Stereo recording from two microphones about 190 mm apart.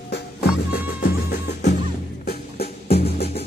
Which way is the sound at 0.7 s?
60° left (ahead or behind).